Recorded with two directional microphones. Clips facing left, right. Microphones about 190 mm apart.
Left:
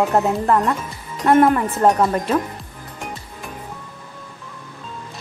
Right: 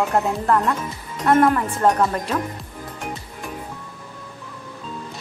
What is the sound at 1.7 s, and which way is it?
Speech, 25° left (ahead or behind).